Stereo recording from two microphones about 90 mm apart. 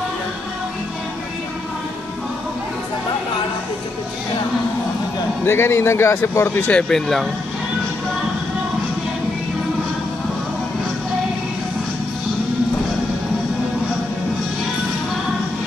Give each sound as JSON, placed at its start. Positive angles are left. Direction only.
{"t": 5.4, "sound": "speech", "side_deg": 25}
{"t": 6.7, "sound": "speech", "side_deg": 5}